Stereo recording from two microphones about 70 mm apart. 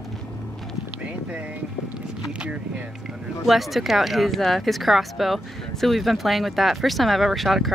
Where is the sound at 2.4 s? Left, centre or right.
Centre.